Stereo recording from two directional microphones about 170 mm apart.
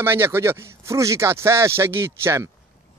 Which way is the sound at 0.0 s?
15° right (ahead or behind).